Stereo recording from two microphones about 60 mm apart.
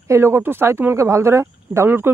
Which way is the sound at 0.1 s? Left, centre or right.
Right.